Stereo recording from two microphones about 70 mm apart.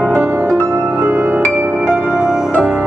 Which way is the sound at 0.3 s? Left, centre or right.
Right.